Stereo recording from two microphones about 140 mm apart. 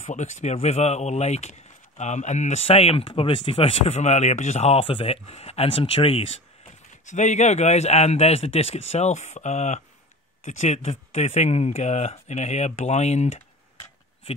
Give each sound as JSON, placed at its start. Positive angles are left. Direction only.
{"t": 0.0, "sound": "speech", "side_deg": 60}
{"t": 7.1, "sound": "speech", "side_deg": 60}